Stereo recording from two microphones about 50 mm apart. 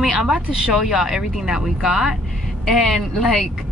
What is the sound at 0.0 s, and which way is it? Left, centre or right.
Speech, centre.